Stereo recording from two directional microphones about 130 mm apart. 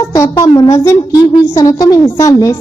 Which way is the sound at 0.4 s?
25° left (ahead or behind).